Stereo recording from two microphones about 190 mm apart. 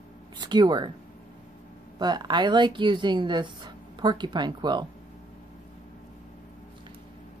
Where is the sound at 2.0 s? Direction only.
20° right (ahead or behind).